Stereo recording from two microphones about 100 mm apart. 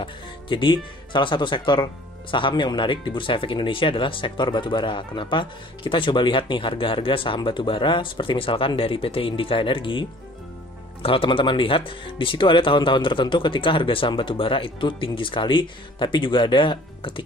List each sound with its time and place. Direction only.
0.0 s speech: 55° left (ahead or behind)